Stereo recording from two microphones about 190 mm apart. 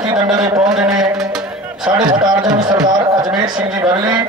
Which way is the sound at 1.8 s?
20° right (ahead or behind).